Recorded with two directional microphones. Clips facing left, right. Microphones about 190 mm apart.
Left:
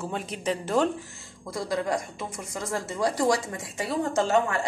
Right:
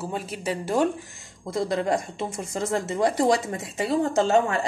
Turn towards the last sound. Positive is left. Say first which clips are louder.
# right 3 dB
turn(degrees=-25)  # may be behind; listen again after turning